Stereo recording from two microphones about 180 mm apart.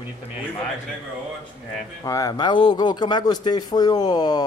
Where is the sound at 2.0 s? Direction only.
20° left (ahead or behind).